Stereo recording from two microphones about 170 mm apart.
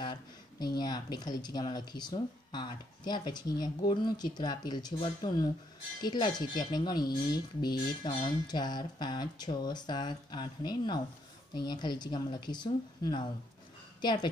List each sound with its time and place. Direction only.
0.0 s speech: 25° left (ahead or behind)